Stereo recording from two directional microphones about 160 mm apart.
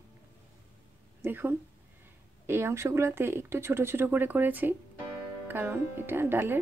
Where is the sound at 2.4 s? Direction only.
15° right (ahead or behind).